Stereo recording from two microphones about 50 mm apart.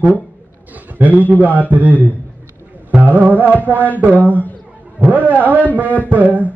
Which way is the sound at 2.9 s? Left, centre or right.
Right.